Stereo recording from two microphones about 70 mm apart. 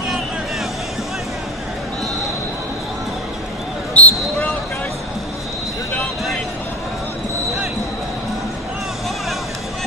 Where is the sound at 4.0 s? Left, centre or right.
Left.